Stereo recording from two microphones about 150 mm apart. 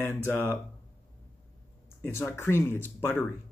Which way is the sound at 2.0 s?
15° left (ahead or behind).